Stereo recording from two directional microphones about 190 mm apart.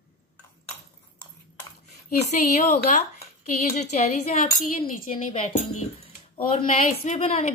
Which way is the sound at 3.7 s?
35° left (ahead or behind).